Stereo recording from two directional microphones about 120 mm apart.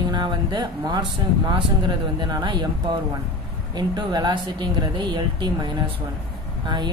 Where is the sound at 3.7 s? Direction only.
35° right (ahead or behind).